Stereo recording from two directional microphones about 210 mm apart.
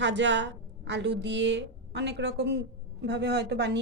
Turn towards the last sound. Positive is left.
turn(degrees=-55)  # may be behind; listen again after turning